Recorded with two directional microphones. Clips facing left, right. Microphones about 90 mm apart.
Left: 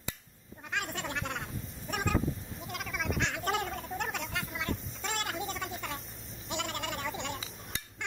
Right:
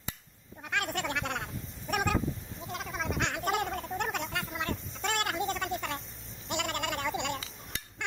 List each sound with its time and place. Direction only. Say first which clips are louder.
0.7 s a sound: right 4 dB; 65° right (ahead or behind)
2.7 s gargling: right 1 dB; 30° right (ahead or behind)
3.2 s gargling: right 2 dB; 55° right (ahead or behind)